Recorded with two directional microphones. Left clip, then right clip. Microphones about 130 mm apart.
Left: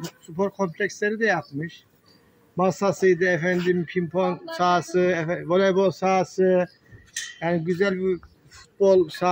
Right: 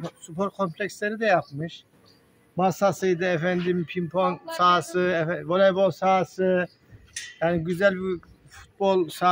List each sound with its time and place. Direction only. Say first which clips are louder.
0.4 s speech: left 2 dB; 35° right (ahead or behind)
2.5 s speech: even; 35° right (ahead or behind)